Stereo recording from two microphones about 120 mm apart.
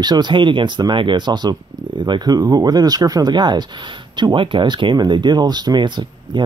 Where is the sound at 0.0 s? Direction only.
35° right (ahead or behind).